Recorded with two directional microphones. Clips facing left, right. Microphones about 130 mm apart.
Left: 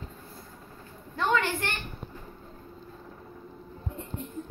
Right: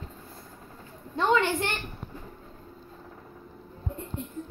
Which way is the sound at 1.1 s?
20° right (ahead or behind).